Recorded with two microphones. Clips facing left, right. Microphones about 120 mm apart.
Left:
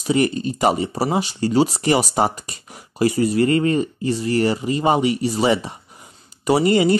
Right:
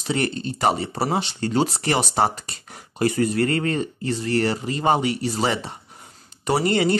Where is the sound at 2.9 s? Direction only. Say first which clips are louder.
Left 3 dB; 50° right (ahead or behind).